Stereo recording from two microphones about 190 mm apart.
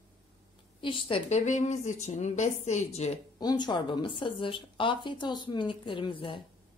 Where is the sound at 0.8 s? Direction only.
25° left (ahead or behind).